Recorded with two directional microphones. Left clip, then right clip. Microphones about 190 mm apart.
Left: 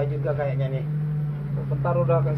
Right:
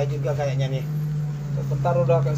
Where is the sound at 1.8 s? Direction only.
5° left (ahead or behind).